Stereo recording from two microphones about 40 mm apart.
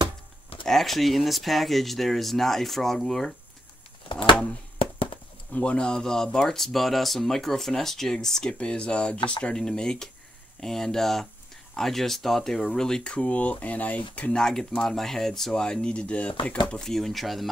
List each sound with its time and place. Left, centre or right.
0.7 s speech: centre
5.5 s speech: left; by 8.5 s centre
8.5 s speech: left
13.1 s speech: left
14.3 s speech: centre; by 16.8 s left
16.8 s speech: centre